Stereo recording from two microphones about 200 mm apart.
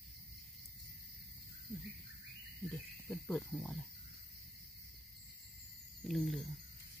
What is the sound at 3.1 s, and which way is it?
Speech, 5° left (ahead or behind).